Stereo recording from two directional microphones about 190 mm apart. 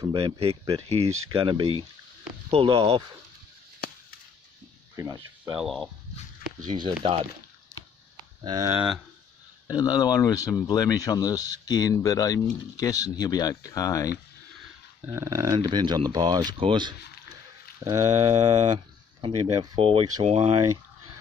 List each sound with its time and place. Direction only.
0.0 s speech: 25° right (ahead or behind)
4.9 s speech: 15° right (ahead or behind)
5.5 s speech: centre (ahead or behind)
6.7 s speech: 25° right (ahead or behind)
8.7 s speech: centre (ahead or behind)
9.7 s speech: 20° left (ahead or behind)
15.0 s speech: 15° right (ahead or behind); by 20.5 s 35° right (ahead or behind)